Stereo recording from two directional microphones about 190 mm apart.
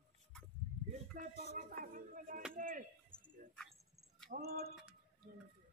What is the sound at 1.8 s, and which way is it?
Music, 45° right (ahead or behind).